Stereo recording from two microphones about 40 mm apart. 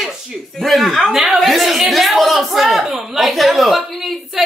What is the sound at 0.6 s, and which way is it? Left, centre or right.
Speech, centre.